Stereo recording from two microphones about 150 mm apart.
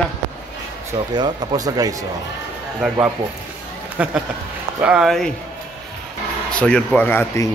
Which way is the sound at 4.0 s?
10° right (ahead or behind).